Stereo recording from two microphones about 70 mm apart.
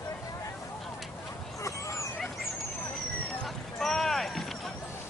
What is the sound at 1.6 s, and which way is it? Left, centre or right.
Dog, left.